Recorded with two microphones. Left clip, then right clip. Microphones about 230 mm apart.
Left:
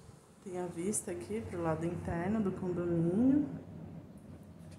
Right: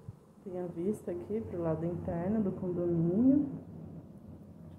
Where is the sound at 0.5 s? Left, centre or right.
Centre.